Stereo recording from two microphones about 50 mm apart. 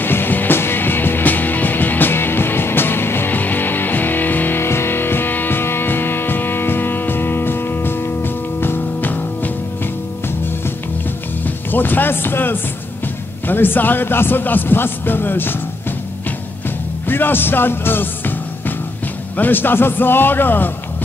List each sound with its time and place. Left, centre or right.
0.0 s music: left
4.6 s music: left
11.4 s speech: left
17.1 s speech: left
19.3 s speech: left